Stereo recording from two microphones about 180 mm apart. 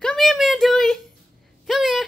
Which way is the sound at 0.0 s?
Centre (ahead or behind).